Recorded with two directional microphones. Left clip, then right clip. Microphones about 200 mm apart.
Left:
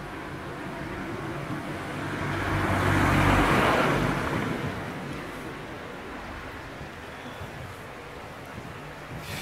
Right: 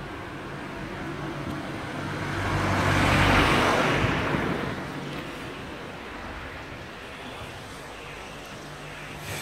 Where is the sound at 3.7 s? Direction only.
40° left (ahead or behind).